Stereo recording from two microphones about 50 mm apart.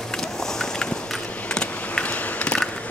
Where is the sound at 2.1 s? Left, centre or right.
Left.